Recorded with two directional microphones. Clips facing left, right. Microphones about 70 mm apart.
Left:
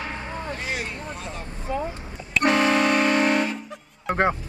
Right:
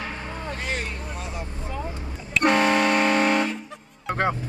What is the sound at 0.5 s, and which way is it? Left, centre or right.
Vehicle, centre.